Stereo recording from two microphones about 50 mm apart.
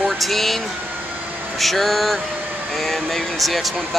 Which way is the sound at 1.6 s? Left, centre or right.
Centre.